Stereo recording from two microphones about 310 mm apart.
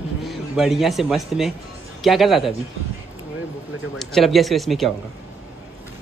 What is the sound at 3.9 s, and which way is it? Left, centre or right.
A man's voice, centre.